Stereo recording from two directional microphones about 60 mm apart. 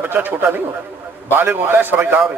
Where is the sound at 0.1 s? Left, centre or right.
Right.